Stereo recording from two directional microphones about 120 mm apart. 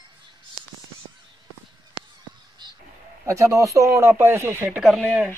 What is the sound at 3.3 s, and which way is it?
Speech, 25° right (ahead or behind).